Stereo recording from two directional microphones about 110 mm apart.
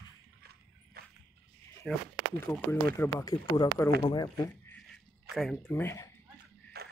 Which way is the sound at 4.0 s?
40° left (ahead or behind).